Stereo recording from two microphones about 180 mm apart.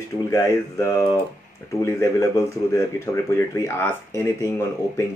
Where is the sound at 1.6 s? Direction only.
15° left (ahead or behind).